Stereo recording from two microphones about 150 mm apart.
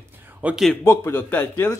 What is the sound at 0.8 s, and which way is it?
Speech, 15° left (ahead or behind).